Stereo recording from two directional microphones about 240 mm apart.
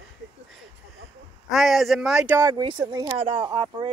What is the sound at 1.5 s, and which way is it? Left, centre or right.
Speech, centre.